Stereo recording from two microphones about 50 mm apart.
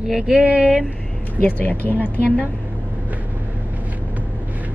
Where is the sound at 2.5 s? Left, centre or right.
Right.